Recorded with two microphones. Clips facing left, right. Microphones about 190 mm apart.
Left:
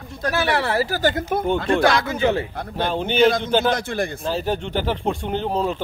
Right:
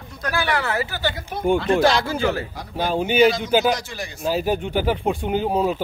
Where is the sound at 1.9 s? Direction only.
30° right (ahead or behind).